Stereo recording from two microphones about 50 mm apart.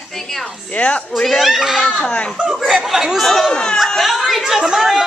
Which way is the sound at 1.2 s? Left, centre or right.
Centre.